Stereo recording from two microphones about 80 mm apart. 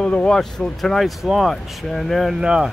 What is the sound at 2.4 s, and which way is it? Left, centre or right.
Speech, centre.